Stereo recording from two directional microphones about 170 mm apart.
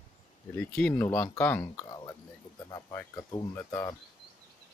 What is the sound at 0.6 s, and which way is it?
Speech, 10° left (ahead or behind).